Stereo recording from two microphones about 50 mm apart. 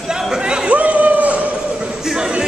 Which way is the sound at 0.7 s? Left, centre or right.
Right.